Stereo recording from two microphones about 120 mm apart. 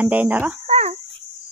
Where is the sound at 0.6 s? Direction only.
70° right (ahead or behind).